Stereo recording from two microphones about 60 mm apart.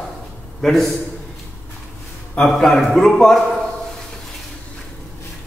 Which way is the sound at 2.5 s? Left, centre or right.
Centre.